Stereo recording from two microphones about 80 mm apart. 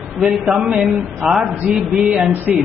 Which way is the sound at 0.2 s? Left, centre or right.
Centre.